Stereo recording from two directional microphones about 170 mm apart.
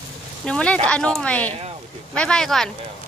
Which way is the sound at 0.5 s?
5° left (ahead or behind).